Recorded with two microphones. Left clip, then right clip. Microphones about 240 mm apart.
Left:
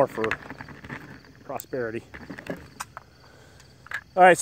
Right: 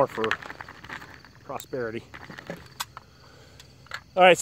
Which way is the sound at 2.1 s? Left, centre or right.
Right.